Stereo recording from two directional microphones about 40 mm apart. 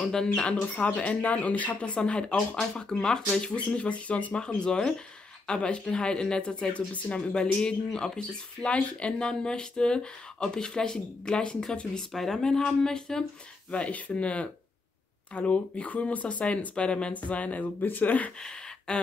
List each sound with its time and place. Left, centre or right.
0.0 s speech: centre
0.6 s speech: left
2.0 s speech: left
3.5 s speech: left
4.6 s speech: left
6.9 s speech: left
12.0 s speech: centre
13.7 s speech: left
17.1 s speech: left
18.4 s a sound: centre